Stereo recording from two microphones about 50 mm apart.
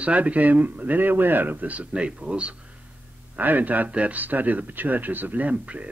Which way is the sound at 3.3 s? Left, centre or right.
Right.